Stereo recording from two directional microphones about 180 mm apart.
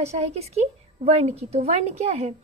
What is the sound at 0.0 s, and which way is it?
A woman's voice, 35° right (ahead or behind).